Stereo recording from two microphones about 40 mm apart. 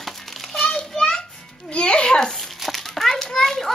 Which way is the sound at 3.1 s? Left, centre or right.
Centre.